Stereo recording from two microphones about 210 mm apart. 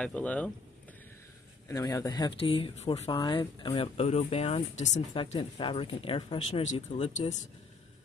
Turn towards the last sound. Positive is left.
turn(degrees=30)  # may be behind; listen again after turning